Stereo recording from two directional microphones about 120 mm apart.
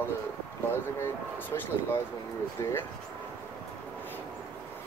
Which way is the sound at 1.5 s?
30° left (ahead or behind).